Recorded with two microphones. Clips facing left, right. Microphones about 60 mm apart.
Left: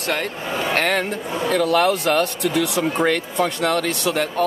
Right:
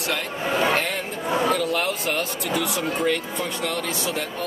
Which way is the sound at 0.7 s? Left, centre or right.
Left.